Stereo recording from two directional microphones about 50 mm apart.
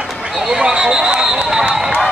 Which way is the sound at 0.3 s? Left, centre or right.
Centre.